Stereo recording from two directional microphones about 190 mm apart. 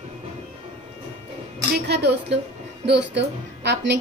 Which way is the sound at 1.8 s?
60° right (ahead or behind).